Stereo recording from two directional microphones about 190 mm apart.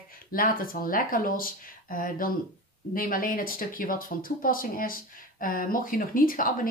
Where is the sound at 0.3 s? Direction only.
50° left (ahead or behind).